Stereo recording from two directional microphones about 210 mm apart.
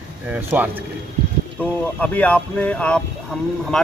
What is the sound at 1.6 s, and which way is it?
Speech, 5° left (ahead or behind).